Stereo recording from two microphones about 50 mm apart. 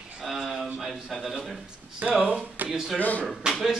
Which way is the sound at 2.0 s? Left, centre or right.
Right.